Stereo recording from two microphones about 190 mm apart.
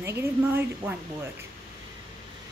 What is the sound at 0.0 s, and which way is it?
Speech, 15° right (ahead or behind).